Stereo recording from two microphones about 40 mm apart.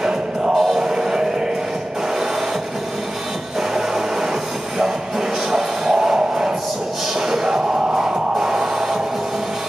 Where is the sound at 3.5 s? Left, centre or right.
Centre.